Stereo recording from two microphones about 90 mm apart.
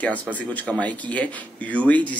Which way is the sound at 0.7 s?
15° left (ahead or behind).